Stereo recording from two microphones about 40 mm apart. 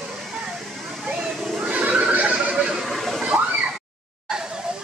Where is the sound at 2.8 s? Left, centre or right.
Centre.